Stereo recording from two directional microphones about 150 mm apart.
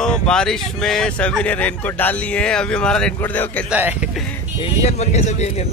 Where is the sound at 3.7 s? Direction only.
10° right (ahead or behind).